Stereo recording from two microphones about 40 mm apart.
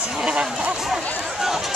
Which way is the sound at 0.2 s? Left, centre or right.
Centre.